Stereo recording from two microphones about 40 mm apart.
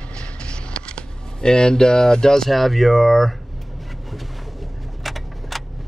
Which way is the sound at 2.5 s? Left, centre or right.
Centre.